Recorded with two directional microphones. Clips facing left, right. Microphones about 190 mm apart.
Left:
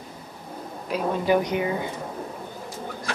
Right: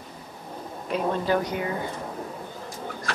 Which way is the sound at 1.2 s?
15° left (ahead or behind).